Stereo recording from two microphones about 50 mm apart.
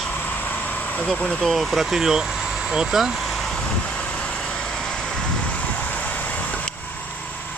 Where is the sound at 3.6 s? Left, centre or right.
Left.